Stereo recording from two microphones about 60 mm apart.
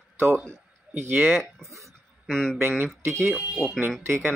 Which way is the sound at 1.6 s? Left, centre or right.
Right.